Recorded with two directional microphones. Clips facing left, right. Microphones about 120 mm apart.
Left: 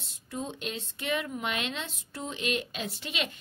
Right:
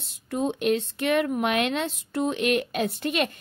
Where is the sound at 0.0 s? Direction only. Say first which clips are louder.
Right 10 dB; 65° right (ahead or behind).